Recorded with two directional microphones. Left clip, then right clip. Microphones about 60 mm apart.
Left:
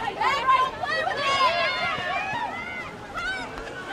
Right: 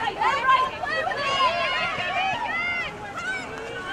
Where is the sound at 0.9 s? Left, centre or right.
Right.